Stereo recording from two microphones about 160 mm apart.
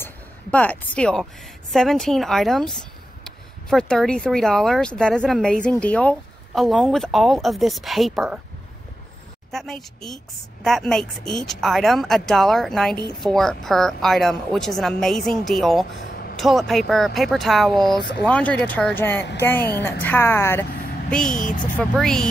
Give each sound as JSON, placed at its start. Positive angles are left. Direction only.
{"t": 0.0, "sound": "a woman's voice", "side_deg": 10}
{"t": 9.5, "sound": "a woman's voice", "side_deg": 0}
{"t": 21.1, "sound": "speech", "side_deg": 5}
{"t": 21.5, "sound": "speech", "side_deg": 55}
{"t": 21.7, "sound": "speech", "side_deg": 5}